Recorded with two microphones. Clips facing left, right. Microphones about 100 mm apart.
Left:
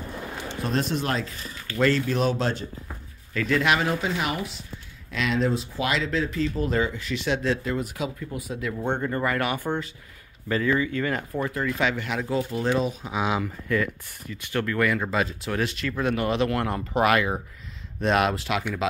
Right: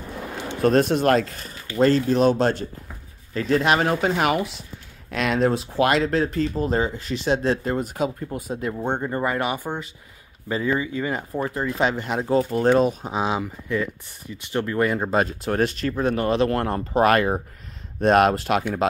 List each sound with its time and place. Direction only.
0.6 s speech: 50° right (ahead or behind)
1.8 s speech: 35° right (ahead or behind)
3.3 s speech: 35° right (ahead or behind)
6.5 s speech: 30° right (ahead or behind)
8.7 s speech: 15° right (ahead or behind)
11.3 s speech: 30° right (ahead or behind); by 13.1 s 50° right (ahead or behind)
13.1 s speech: 30° right (ahead or behind); by 18.7 s 45° right (ahead or behind)